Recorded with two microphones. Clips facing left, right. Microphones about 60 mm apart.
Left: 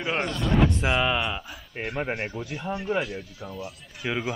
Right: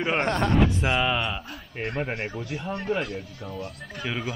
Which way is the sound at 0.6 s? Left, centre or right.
Centre.